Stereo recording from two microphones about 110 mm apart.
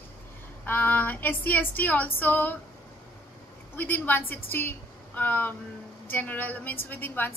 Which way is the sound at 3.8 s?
15° left (ahead or behind).